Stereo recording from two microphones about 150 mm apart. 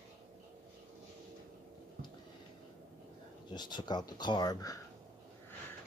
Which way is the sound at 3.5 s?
30° left (ahead or behind).